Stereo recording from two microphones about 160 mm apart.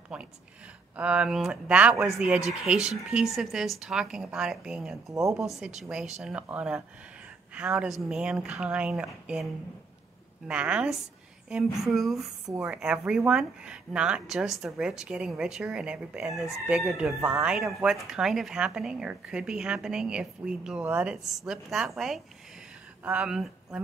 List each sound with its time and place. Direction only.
0.1 s speech: 5° right (ahead or behind)
5.1 s speech: 20° right (ahead or behind)
5.4 s speech: 5° right (ahead or behind)
10.5 s a woman's voice: 5° right (ahead or behind)